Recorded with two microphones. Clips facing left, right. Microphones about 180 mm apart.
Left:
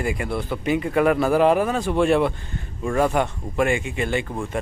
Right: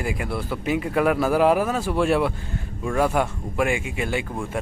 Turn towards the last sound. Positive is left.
turn(degrees=-5)  # may be behind; listen again after turning